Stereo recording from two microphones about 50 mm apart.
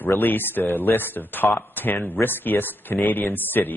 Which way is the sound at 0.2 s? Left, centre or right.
Left.